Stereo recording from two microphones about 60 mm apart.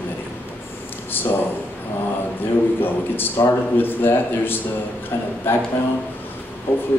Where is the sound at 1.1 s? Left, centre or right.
Left.